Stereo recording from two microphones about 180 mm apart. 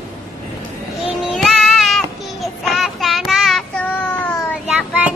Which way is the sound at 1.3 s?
Centre (ahead or behind).